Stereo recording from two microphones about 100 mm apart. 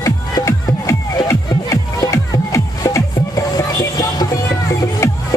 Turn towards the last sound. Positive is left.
turn(degrees=30)  # may be behind; listen again after turning